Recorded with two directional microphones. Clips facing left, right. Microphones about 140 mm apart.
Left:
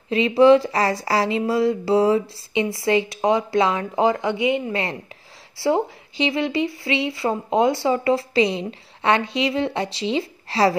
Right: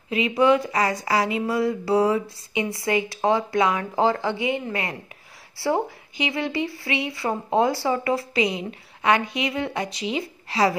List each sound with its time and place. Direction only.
0.4 s speech: 30° left (ahead or behind)